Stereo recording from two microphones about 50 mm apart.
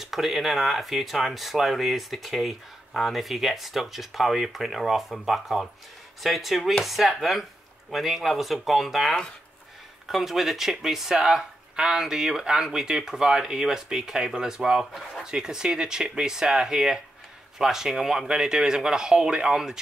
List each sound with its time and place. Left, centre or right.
0.0 s speech: centre